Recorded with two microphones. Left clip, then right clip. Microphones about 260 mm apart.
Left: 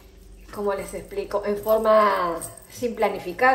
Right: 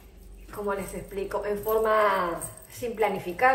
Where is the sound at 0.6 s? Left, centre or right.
Left.